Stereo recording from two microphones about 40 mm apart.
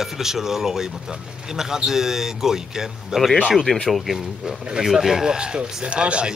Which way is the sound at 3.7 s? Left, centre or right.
Left.